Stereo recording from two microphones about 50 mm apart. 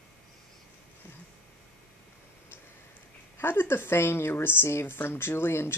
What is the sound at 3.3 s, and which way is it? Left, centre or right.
A woman's voice, left.